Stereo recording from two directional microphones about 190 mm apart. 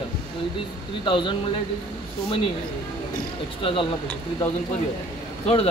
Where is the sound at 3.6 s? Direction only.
25° left (ahead or behind).